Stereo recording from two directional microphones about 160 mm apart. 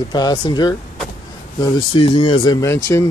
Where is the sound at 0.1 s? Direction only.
25° left (ahead or behind).